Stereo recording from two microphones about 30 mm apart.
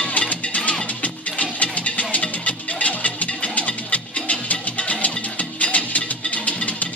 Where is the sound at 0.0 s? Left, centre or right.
Left.